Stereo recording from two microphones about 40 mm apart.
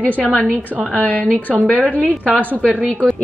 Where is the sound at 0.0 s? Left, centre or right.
Left.